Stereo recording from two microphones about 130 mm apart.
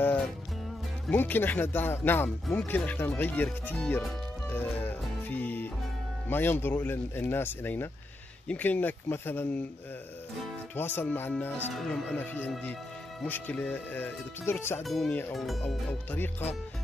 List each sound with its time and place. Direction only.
0.0 s music: 15° left (ahead or behind)
1.1 s speech: 15° left (ahead or behind)
4.5 s music: 15° left (ahead or behind)
6.2 s speech: 15° left (ahead or behind)
11.0 s speech: 15° left (ahead or behind)
11.7 s speech: centre (ahead or behind)
13.2 s speech: 10° left (ahead or behind)
14.8 s speech: centre (ahead or behind)
15.7 s speech: 10° left (ahead or behind)